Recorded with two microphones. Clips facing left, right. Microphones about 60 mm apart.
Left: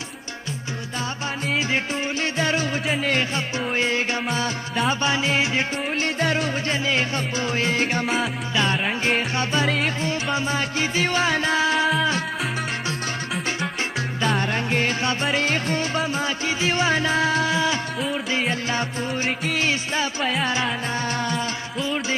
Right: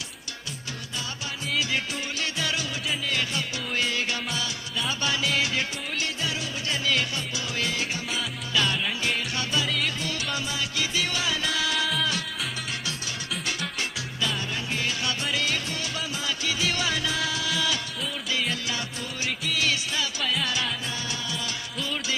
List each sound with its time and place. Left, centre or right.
2.3 s music: left
2.9 s music: left
3.2 s music: left
6.0 s music: left
6.9 s music: left
8.5 s music: left
14.2 s music: left
21.7 s music: centre